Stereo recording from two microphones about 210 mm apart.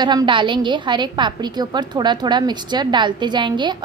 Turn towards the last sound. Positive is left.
turn(degrees=-20)  # may be behind; listen again after turning